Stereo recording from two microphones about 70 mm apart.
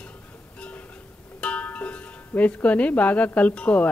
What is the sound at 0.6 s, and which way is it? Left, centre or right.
Music, centre.